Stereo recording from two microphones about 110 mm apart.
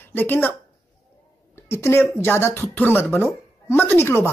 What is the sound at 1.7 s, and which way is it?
Speech, 20° left (ahead or behind).